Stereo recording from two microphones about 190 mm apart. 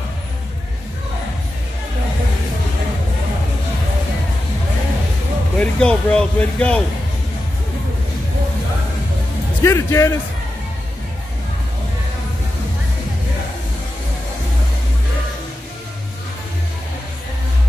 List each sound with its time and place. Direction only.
5.6 s speech: 5° left (ahead or behind)
9.6 s speech: 15° left (ahead or behind)